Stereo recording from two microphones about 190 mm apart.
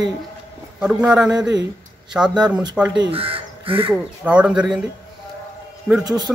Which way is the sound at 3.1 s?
30° right (ahead or behind).